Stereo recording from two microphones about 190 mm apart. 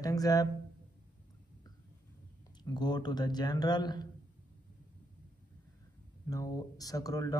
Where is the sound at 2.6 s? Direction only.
20° left (ahead or behind).